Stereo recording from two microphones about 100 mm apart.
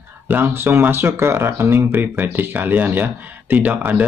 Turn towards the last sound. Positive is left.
turn(degrees=-15)  # may be behind; listen again after turning